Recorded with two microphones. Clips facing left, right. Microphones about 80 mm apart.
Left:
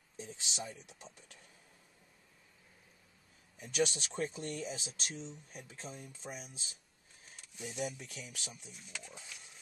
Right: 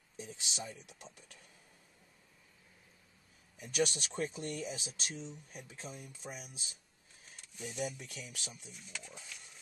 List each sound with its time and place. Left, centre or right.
0.2 s speech: centre
3.5 s speech: centre